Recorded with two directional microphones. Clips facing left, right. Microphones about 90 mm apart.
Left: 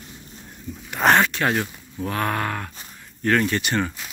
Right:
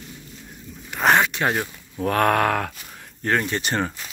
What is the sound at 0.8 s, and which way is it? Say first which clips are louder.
Speech: left 1 dB; 5° left (ahead or behind).